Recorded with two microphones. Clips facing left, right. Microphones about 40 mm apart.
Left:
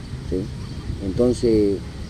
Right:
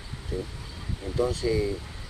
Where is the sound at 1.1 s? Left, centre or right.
Centre.